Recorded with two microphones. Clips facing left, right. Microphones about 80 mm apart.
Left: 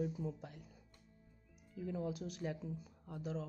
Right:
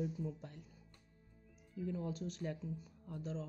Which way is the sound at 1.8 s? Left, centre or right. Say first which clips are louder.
Even; centre.